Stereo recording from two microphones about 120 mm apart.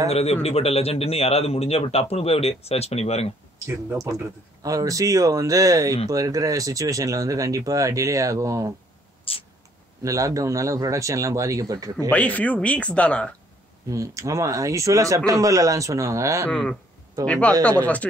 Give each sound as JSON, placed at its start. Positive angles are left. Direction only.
{"t": 0.1, "sound": "a man's voice", "side_deg": 60}
{"t": 3.6, "sound": "speech", "side_deg": -25}
{"t": 9.3, "sound": "a sound", "side_deg": 50}
{"t": 10.0, "sound": "speech", "side_deg": -30}
{"t": 12.1, "sound": "speech", "side_deg": 10}
{"t": 13.8, "sound": "speech", "side_deg": -25}
{"t": 16.4, "sound": "speech", "side_deg": 5}